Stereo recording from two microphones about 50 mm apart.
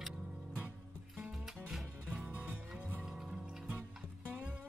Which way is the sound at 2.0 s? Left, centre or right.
Centre.